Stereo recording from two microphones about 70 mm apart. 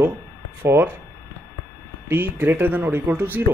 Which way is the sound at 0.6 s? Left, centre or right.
Right.